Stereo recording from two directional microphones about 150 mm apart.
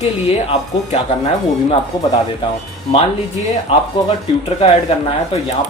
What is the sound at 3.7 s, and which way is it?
Speech, 40° left (ahead or behind).